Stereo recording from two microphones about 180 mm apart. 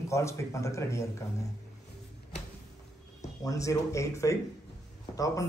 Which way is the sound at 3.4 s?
15° left (ahead or behind).